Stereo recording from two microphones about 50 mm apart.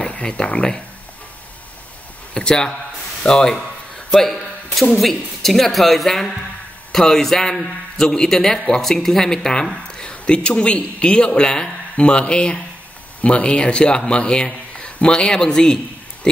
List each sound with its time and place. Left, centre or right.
0.0 s speech: left
2.3 s a man's voice: centre